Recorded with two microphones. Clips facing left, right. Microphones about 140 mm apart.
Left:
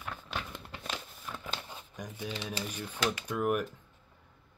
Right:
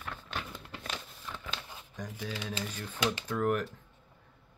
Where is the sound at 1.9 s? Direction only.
10° left (ahead or behind).